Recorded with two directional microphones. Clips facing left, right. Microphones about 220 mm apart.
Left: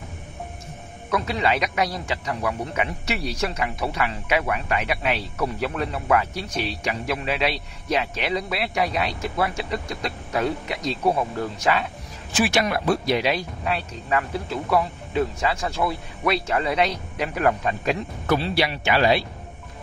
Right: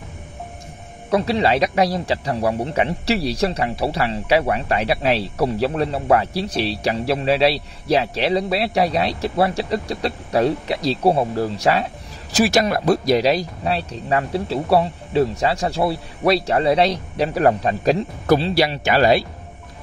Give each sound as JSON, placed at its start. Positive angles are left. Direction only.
{"t": 1.1, "sound": "a man's voice", "side_deg": -35}